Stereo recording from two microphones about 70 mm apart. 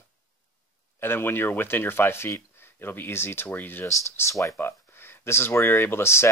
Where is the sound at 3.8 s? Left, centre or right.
Left.